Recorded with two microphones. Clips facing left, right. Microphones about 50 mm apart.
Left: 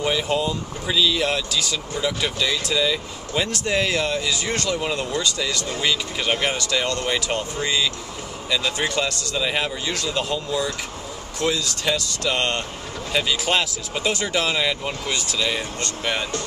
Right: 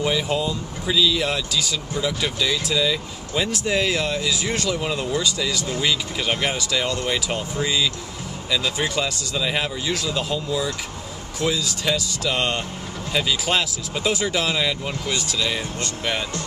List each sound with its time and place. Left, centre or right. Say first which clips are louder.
0.0 s speech: even; centre